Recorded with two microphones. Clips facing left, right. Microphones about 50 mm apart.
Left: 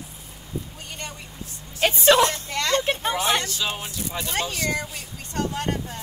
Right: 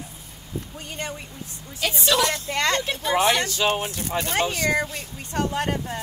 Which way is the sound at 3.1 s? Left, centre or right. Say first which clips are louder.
Right 8 dB; right.